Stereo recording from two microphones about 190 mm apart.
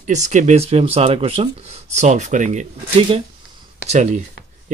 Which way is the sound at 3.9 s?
40° right (ahead or behind).